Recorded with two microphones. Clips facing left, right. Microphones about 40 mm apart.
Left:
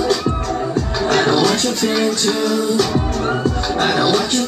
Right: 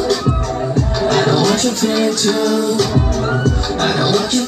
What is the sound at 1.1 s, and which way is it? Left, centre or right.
Music, centre.